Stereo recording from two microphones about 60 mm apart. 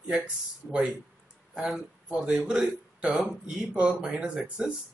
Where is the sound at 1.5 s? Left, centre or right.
Centre.